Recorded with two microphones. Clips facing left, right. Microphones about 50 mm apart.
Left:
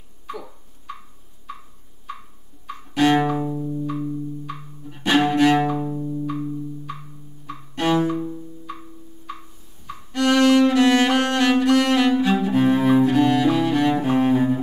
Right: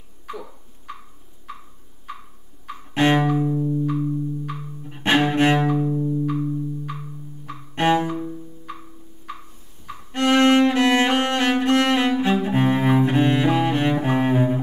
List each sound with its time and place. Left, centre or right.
2.6 s music: right
3.3 s music: centre
4.8 s music: right
5.9 s music: centre
7.7 s bowed string instrument: right
8.1 s bowed string instrument: centre
10.1 s music: right
13.9 s cello: right